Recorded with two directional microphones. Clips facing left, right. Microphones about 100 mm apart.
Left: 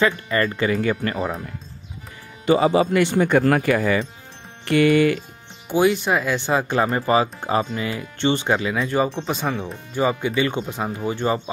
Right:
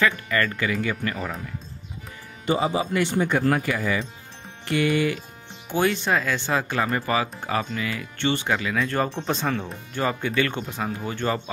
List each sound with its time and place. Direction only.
0.0 s speech: 30° left (ahead or behind)
2.4 s speech: 80° left; by 5.2 s 60° left (ahead or behind)
5.7 s speech: 10° left (ahead or behind)
8.9 s speech: 5° left (ahead or behind)